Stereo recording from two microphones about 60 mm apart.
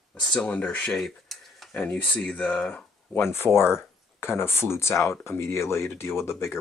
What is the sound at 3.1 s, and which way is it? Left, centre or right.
Speech, left.